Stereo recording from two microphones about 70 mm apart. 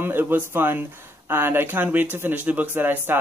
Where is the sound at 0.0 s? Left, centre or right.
Right.